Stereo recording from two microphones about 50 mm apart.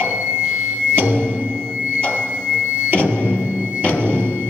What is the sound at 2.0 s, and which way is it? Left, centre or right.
Music, left.